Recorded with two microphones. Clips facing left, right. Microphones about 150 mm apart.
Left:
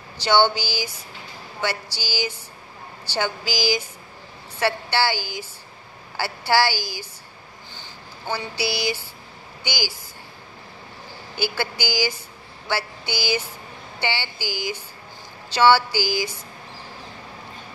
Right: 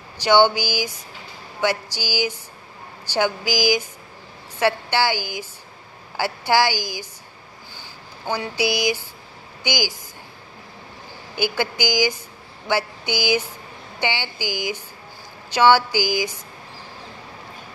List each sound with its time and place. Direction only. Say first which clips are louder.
0.2 s a woman's voice: right 3 dB; 15° right (ahead or behind)
8.3 s a woman's voice: right 4 dB; 15° right (ahead or behind)
11.3 s a woman's voice: right 3 dB; 15° right (ahead or behind)
12.6 s mantra: right 4 dB; 15° right (ahead or behind)
13.9 s a woman's voice: right 2 dB; 15° right (ahead or behind)